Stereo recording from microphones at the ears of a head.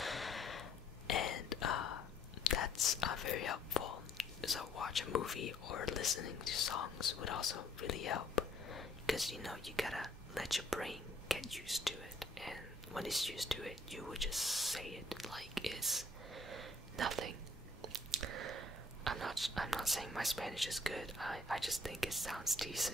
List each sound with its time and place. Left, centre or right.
0.6 s whispering: left
9.3 s speech: centre
16.4 s whispering: right
17.8 s chewing: right
19.4 s speech: centre